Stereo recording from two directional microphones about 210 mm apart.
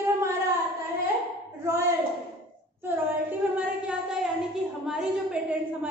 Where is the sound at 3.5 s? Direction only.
5° right (ahead or behind).